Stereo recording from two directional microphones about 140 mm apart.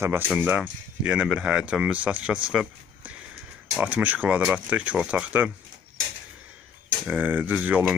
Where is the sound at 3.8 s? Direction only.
10° right (ahead or behind).